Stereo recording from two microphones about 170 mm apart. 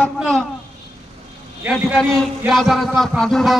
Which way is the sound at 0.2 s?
5° left (ahead or behind).